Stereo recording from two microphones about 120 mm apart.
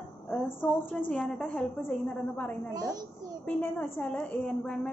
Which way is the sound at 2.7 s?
35° right (ahead or behind).